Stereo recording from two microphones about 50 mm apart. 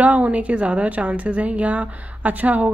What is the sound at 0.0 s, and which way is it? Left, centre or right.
A woman's voice, right.